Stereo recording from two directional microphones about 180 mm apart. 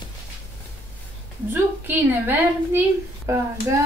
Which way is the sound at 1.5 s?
10° right (ahead or behind).